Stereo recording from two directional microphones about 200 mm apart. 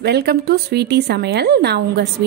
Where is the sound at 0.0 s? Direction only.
55° right (ahead or behind).